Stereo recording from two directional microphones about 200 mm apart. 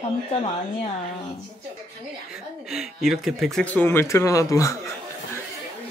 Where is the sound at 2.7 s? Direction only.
Centre (ahead or behind); by 4.9 s 15° left (ahead or behind).